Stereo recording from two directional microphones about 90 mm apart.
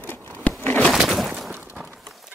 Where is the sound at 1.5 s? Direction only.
15° right (ahead or behind).